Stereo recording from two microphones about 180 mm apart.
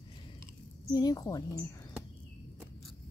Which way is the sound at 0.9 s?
20° left (ahead or behind).